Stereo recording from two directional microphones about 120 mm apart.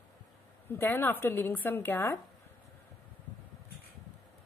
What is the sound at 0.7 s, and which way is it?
A woman's voice, 20° left (ahead or behind).